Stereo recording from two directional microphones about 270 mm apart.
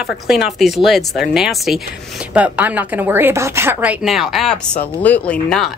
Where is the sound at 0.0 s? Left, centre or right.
Centre.